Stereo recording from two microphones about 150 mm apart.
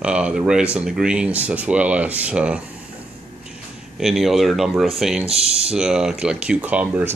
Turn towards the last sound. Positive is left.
turn(degrees=-10)  # may be behind; listen again after turning